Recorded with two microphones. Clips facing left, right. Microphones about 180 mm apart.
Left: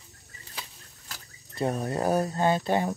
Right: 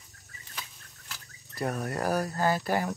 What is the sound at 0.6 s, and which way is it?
Chicken, 40° left (ahead or behind).